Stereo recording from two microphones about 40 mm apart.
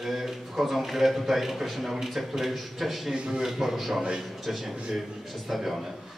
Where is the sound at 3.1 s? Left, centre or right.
Centre.